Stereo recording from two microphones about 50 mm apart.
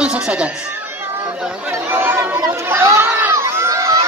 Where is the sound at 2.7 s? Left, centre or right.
Right.